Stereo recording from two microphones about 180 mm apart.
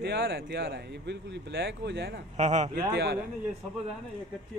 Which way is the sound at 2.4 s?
40° right (ahead or behind).